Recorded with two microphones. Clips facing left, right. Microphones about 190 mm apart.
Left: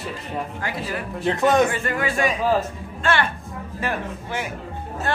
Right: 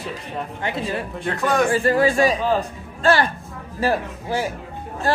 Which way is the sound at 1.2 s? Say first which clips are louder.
Left 3 dB; 20° left (ahead or behind).